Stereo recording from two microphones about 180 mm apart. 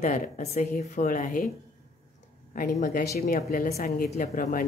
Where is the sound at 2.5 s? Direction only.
50° left (ahead or behind).